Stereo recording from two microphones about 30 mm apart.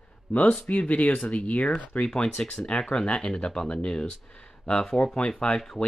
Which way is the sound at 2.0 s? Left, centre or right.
Left.